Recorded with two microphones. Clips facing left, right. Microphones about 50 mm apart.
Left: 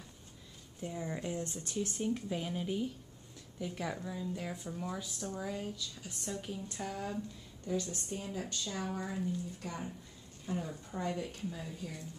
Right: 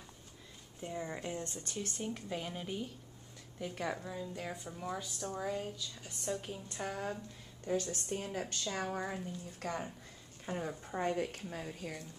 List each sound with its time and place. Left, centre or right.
0.7 s a woman's voice: centre
1.4 s speech: centre
2.0 s a woman's voice: centre
6.8 s speech: right
7.6 s a woman's voice: right
9.6 s a woman's voice: right
10.4 s a woman's voice: right